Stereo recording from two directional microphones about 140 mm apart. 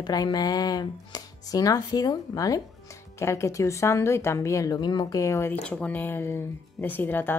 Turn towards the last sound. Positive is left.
turn(degrees=15)  # may be behind; listen again after turning